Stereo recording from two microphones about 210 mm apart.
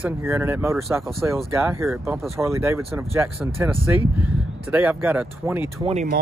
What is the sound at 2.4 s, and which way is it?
Speech, 10° right (ahead or behind).